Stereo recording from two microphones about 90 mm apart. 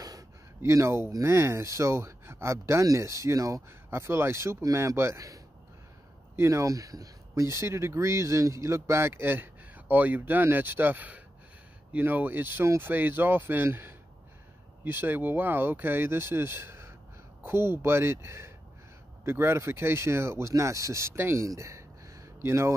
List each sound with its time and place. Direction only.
0.6 s speech: 30° right (ahead or behind)